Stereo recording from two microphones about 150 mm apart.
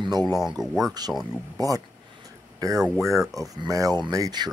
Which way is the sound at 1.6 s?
25° right (ahead or behind).